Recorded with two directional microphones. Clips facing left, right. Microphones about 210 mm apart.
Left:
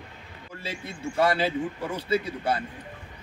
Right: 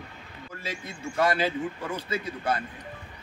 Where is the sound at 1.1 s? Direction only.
30° left (ahead or behind).